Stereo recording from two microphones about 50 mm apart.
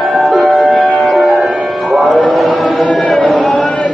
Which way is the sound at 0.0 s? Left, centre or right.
Centre.